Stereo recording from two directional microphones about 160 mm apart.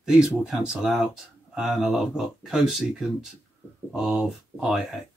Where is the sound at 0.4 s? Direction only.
5° right (ahead or behind).